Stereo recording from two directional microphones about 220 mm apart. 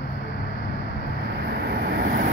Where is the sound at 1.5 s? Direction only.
45° right (ahead or behind).